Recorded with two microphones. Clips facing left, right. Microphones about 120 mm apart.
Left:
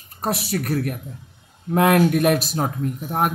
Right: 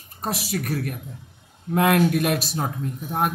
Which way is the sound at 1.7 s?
50° left (ahead or behind).